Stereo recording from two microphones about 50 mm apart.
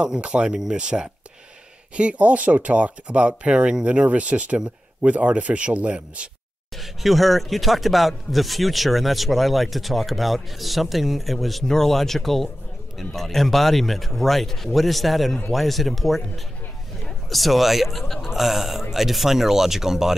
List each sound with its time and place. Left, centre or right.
0.0 s speech: centre
6.8 s speech: centre